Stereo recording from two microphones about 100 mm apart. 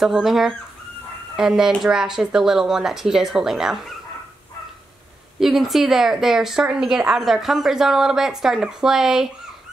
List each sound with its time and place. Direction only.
0.0 s speech: 5° right (ahead or behind)
5.4 s speech: 5° right (ahead or behind)